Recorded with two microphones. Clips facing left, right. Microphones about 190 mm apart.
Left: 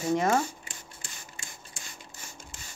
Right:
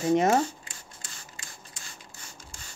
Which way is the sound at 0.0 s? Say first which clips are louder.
Right 3 dB; 20° right (ahead or behind).